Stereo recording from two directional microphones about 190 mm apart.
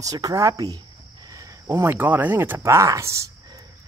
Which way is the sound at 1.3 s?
20° right (ahead or behind).